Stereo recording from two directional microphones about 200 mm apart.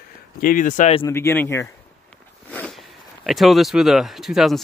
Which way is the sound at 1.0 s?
10° left (ahead or behind).